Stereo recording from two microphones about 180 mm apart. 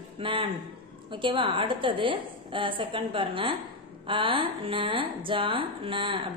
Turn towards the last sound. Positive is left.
turn(degrees=-30)  # may be behind; listen again after turning